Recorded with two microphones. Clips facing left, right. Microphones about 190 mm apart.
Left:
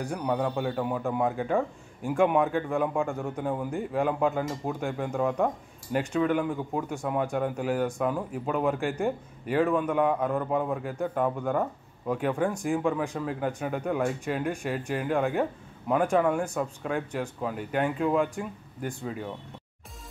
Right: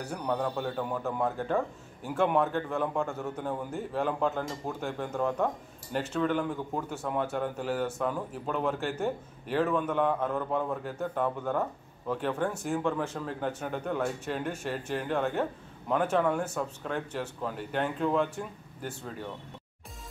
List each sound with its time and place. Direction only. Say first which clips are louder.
0.0 s a man's voice: left 3 dB; 10° left (ahead or behind)